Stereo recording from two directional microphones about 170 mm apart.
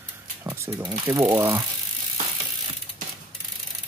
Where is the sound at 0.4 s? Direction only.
15° right (ahead or behind).